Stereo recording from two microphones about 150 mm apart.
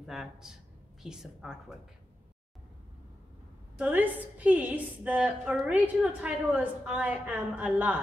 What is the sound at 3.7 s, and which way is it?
A woman's voice, 10° right (ahead or behind).